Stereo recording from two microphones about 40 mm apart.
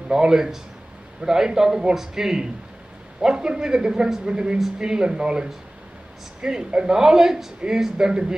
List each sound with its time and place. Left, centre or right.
0.1 s speech: centre
6.7 s speech: right
7.0 s speech: centre